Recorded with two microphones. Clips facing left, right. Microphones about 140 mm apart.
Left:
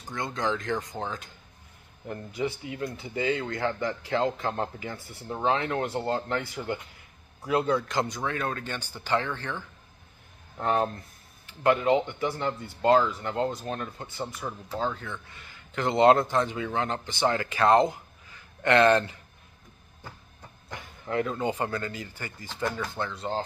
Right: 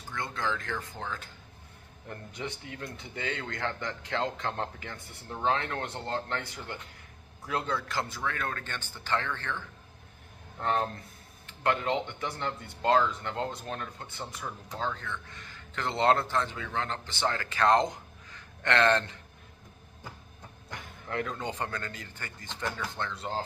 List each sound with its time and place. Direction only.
0.1 s speech: 20° left (ahead or behind)
2.0 s speech: 5° left (ahead or behind)
10.6 s speech: 10° left (ahead or behind)
20.7 s speech: 5° left (ahead or behind)